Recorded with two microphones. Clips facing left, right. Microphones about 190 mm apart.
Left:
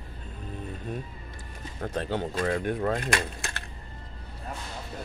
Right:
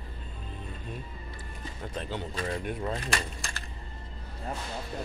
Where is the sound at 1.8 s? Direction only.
55° left (ahead or behind).